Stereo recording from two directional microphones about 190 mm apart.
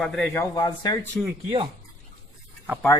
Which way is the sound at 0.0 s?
Centre (ahead or behind).